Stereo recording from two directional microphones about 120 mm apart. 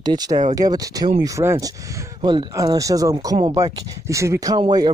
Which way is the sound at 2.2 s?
45° right (ahead or behind).